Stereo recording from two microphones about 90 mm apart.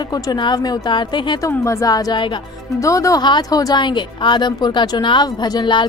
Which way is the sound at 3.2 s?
55° left (ahead or behind).